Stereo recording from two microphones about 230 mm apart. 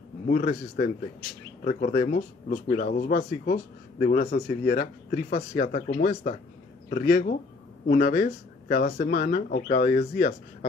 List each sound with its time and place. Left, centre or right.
0.3 s speech: left